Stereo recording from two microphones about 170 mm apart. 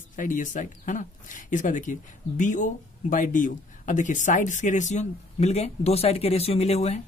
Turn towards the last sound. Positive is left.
turn(degrees=40)  # may be behind; listen again after turning